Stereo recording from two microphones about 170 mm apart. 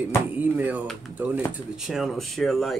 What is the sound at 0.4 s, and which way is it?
Speech, 10° right (ahead or behind).